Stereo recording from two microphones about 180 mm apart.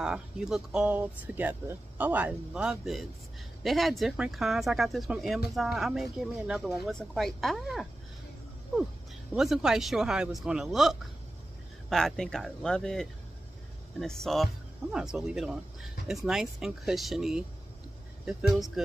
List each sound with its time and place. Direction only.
0.0 s speech: 5° right (ahead or behind)
9.3 s speech: 5° right (ahead or behind)
18.8 s speech: centre (ahead or behind)